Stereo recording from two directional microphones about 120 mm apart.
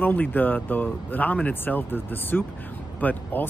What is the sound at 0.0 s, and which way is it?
Speech, 15° left (ahead or behind).